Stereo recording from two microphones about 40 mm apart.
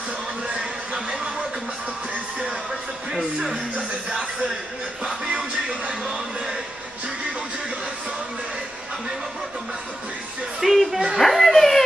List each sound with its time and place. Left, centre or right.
0.5 s a sound: right
3.1 s speech: centre
5.7 s speech: centre
10.6 s a child's voice: centre